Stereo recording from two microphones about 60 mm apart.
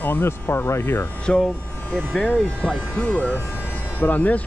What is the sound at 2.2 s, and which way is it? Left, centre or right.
Speech, centre.